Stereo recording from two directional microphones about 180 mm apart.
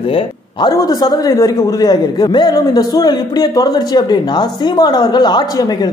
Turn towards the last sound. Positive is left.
turn(degrees=25)  # may be behind; listen again after turning